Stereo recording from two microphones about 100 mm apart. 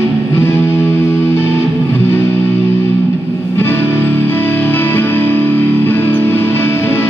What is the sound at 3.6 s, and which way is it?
Music, 20° left (ahead or behind).